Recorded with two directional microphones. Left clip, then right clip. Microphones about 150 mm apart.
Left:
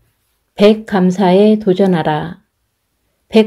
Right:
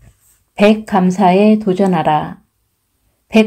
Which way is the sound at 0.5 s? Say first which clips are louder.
Left 1 dB; 30° left (ahead or behind).